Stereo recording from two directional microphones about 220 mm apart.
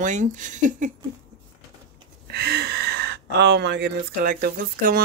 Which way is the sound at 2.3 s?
50° right (ahead or behind).